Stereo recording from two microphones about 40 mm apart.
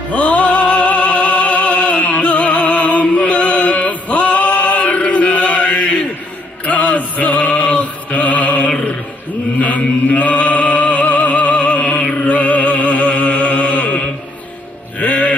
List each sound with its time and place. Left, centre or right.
0.1 s music: left